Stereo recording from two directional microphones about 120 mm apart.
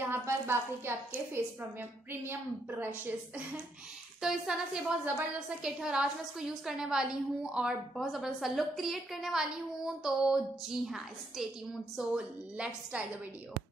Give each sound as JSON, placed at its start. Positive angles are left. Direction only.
{"t": 0.0, "sound": "a woman's voice", "side_deg": -20}
{"t": 4.2, "sound": "a woman's voice", "side_deg": -5}
{"t": 12.5, "sound": "a woman's voice", "side_deg": -10}